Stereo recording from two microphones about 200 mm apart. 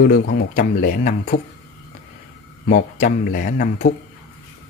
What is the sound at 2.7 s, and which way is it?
Speech, 40° left (ahead or behind).